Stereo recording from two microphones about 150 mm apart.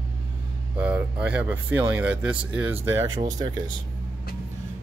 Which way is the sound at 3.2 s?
25° right (ahead or behind).